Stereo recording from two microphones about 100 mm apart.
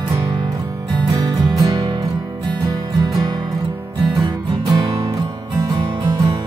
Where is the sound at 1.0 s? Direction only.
35° right (ahead or behind).